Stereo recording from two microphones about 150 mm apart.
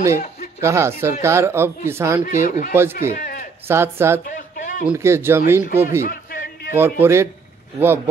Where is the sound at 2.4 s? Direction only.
60° left (ahead or behind).